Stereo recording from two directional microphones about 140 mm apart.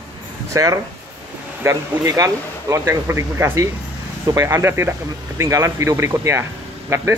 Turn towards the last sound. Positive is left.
turn(degrees=-20)  # may be behind; listen again after turning